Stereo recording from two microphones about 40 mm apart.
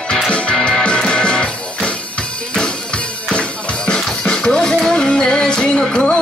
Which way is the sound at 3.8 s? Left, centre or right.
Centre.